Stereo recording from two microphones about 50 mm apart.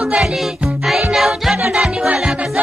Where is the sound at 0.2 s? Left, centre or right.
Centre.